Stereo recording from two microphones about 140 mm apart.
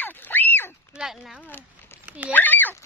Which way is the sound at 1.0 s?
5° right (ahead or behind).